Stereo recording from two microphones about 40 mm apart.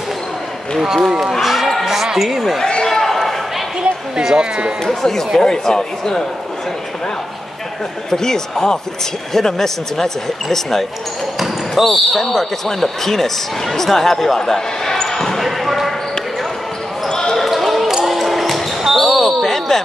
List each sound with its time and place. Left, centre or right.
0.7 s a man's voice: centre
1.4 s a sound: centre
2.1 s a man's voice: centre
2.6 s a sound: centre
4.2 s speech: centre
4.8 s speech: centre
8.1 s speech: centre
17.1 s basketball bounce: centre
17.4 s basketball bounce: centre